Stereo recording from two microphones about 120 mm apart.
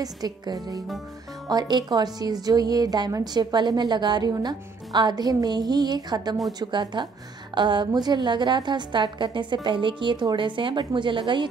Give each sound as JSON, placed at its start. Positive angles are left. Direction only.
{"t": 0.0, "sound": "a woman's voice", "side_deg": -30}